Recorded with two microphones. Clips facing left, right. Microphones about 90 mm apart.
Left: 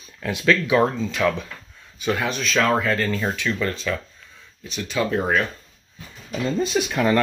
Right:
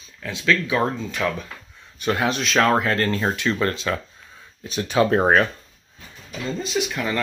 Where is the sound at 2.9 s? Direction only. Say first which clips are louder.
Right 1 dB; 5° left (ahead or behind).